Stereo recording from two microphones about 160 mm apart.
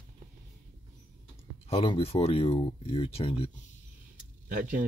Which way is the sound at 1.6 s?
35° left (ahead or behind).